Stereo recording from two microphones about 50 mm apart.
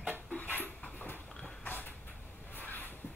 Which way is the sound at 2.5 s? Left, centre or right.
Left.